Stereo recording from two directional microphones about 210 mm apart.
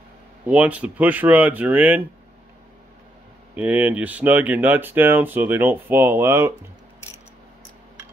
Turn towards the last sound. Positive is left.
turn(degrees=-10)  # may be behind; listen again after turning